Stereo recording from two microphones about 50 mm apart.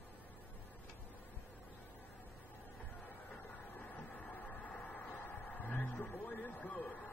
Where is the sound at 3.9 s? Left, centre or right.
Left.